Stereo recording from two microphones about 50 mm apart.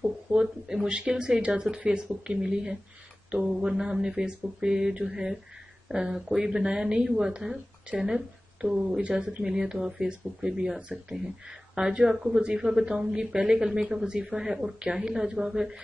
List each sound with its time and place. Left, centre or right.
0.0 s speech: centre